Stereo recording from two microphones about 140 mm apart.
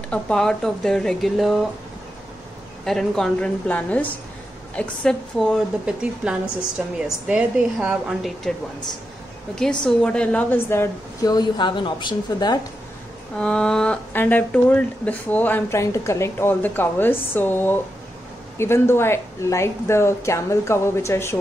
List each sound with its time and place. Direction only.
0.1 s speech: 5° left (ahead or behind)
2.8 s speech: 5° left (ahead or behind)
5.9 s a woman's voice: 5° right (ahead or behind)
9.8 s speech: 5° left (ahead or behind)
11.3 s a woman's voice: 35° left (ahead or behind)
13.4 s a woman's voice: 5° left (ahead or behind)